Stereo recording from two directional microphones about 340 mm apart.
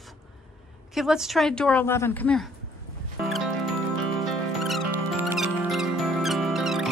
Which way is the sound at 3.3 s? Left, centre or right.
Centre.